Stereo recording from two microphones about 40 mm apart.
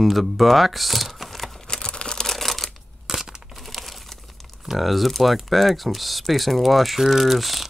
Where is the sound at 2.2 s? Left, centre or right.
Centre.